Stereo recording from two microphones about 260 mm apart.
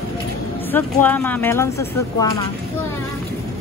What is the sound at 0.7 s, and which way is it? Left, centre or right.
Speech, centre.